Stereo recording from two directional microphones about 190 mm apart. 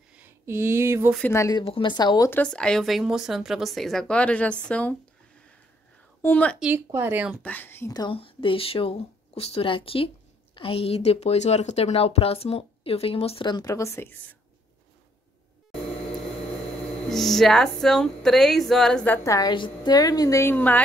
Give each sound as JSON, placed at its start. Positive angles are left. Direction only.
{"t": 0.1, "sound": "speech", "side_deg": -10}
{"t": 1.3, "sound": "a woman's voice", "side_deg": 15}
{"t": 1.6, "sound": "speech", "side_deg": 30}
{"t": 6.2, "sound": "a woman's voice", "side_deg": 5}
{"t": 6.6, "sound": "speech", "side_deg": -10}
{"t": 7.4, "sound": "speech", "side_deg": 10}
{"t": 17.1, "sound": "speech", "side_deg": 0}
{"t": 19.2, "sound": "a woman's voice", "side_deg": 20}